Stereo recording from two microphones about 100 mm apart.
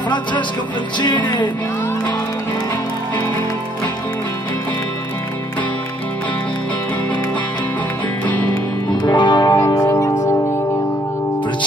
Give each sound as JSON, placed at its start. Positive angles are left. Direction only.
{"t": 0.9, "sound": "music", "side_deg": 50}
{"t": 9.0, "sound": "music", "side_deg": 50}
{"t": 9.7, "sound": "music", "side_deg": 30}